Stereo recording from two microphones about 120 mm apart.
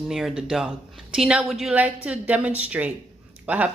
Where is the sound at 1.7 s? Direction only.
10° right (ahead or behind).